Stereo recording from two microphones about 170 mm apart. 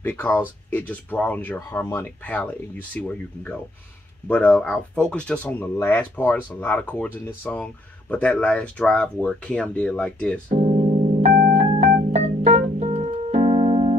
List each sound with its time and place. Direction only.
0.0 s speech: 10° left (ahead or behind)
11.3 s organ: 65° right (ahead or behind)
11.6 s organ: 35° right (ahead or behind)
12.1 s keyboard: 40° right (ahead or behind)